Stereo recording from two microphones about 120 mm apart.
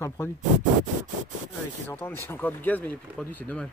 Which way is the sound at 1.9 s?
15° left (ahead or behind).